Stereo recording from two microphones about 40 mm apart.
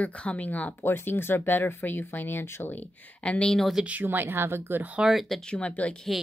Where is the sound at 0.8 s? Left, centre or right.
Left.